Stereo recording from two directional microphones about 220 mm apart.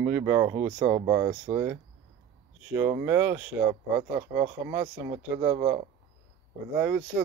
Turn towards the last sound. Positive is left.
turn(degrees=-5)  # may be behind; listen again after turning